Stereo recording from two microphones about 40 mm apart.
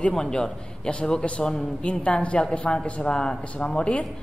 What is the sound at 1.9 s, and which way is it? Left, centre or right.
A woman's voice, left.